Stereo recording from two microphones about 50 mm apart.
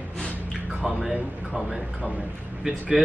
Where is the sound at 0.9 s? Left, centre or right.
Centre.